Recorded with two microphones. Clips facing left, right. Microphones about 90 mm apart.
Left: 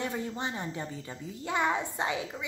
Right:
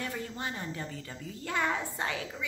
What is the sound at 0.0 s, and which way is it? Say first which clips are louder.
A woman's voice: left 3 dB; 20° left (ahead or behind).